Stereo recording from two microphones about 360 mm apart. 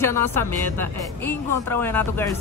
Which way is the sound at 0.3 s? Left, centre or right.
Right.